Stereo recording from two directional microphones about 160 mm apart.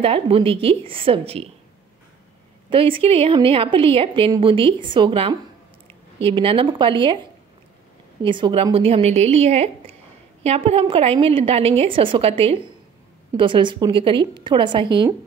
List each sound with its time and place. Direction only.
0.0 s a woman's voice: 35° right (ahead or behind)
2.7 s a woman's voice: 35° right (ahead or behind)
8.2 s a woman's voice: 30° right (ahead or behind)